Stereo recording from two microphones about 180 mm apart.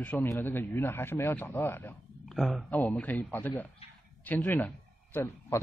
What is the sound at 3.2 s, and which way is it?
A man's voice, 10° left (ahead or behind).